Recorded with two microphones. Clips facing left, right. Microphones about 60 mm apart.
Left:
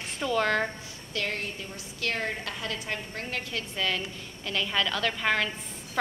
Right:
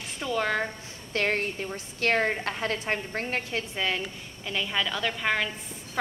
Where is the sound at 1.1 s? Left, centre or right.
Right.